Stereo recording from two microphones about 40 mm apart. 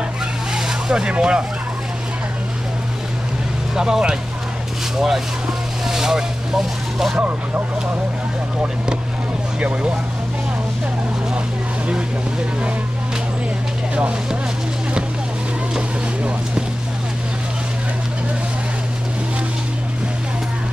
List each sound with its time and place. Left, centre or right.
0.6 s vehicle: centre
3.7 s speech: centre
4.9 s speech: centre
5.9 s vehicle: centre
9.6 s speech: right